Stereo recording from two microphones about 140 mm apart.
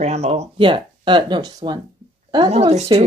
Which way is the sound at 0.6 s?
35° right (ahead or behind).